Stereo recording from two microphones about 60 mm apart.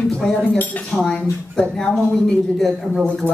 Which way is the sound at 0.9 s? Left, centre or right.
Centre.